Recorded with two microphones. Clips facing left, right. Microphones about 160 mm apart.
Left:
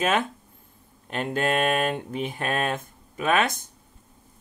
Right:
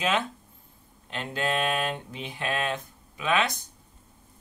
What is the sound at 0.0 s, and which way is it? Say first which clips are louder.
Speech: left 3 dB; 50° left (ahead or behind).